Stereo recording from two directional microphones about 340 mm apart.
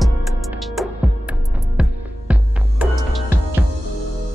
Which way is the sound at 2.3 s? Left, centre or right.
Centre.